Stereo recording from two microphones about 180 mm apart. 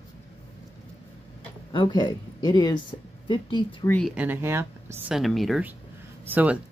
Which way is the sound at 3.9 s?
5° left (ahead or behind).